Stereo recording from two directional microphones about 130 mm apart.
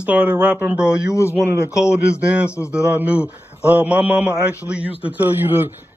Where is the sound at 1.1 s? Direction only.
20° left (ahead or behind).